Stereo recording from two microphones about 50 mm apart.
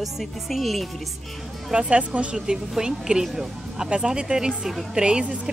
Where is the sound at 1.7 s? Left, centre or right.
Right.